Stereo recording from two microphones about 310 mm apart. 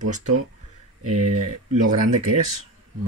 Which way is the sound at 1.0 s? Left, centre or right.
Right.